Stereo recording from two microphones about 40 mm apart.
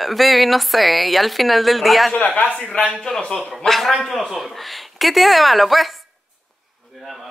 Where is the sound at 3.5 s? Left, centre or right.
Centre.